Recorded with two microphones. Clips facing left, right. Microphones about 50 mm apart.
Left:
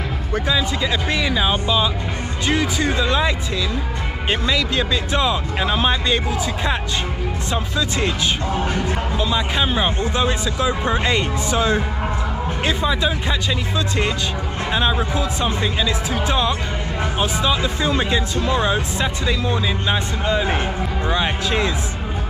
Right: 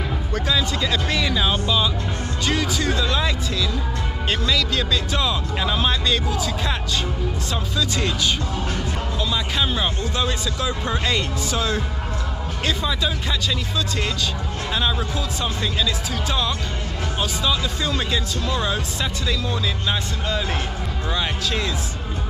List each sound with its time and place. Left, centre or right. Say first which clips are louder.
0.3 s speech: left 3 dB; centre